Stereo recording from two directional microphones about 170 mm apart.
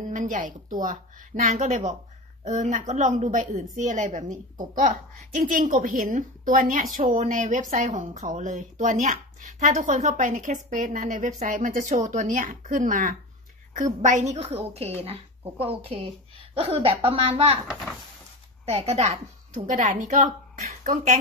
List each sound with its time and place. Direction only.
0.0 s a woman's voice: 50° right (ahead or behind)
18.7 s a woman's voice: 35° right (ahead or behind)